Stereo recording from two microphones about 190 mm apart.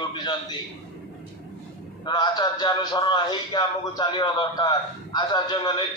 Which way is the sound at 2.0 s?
25° left (ahead or behind).